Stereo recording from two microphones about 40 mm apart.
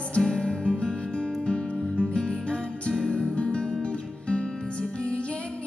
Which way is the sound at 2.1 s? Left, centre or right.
Left.